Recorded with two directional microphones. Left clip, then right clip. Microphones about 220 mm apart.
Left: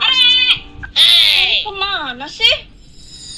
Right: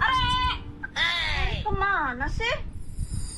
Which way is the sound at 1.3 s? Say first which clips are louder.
Left 16 dB; 25° left (ahead or behind).